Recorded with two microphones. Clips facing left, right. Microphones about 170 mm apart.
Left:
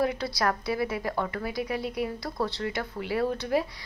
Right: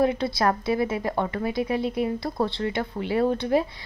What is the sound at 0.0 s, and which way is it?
Speech, 25° right (ahead or behind).